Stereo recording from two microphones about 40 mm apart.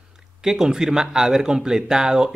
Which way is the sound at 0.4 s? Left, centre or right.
Centre.